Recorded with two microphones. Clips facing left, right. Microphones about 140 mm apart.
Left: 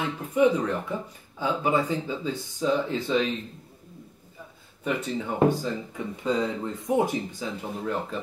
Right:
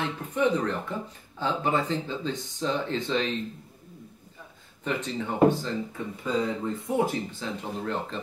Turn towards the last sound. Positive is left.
turn(degrees=10)  # may be behind; listen again after turning